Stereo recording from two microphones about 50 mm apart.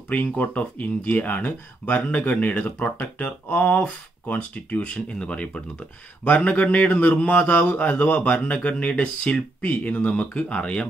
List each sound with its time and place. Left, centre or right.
0.1 s speech: left
2.0 s a man's voice: left
6.2 s a man's voice: left